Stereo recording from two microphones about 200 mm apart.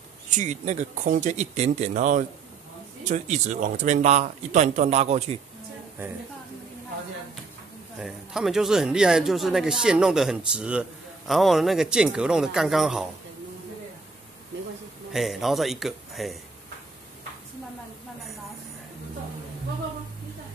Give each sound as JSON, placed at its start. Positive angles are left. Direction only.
{"t": 0.3, "sound": "speech", "side_deg": -35}
{"t": 8.0, "sound": "speech", "side_deg": 0}
{"t": 15.1, "sound": "speech", "side_deg": 0}